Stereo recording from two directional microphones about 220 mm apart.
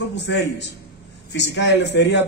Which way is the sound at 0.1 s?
55° left (ahead or behind).